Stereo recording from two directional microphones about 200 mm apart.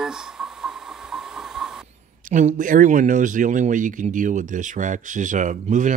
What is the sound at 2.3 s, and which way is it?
Speech, 40° right (ahead or behind).